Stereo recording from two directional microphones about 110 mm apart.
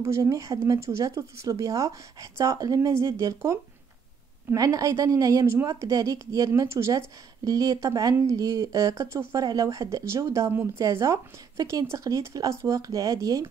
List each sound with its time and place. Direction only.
0.0 s a woman's voice: 30° right (ahead or behind)
4.6 s a woman's voice: 30° right (ahead or behind)